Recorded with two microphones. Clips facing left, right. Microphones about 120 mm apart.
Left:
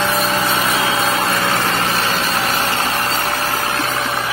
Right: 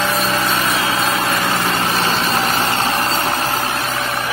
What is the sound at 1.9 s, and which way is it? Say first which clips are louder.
Vehicle: right 1 dB; 35° right (ahead or behind).